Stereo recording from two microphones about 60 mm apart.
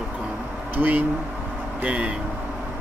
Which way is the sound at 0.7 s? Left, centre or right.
Right.